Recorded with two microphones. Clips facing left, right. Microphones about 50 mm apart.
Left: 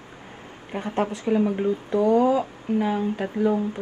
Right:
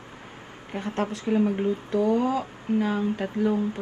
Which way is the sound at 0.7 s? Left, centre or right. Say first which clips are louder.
Left 3 dB; centre.